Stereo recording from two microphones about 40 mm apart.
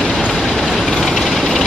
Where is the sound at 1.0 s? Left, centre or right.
Centre.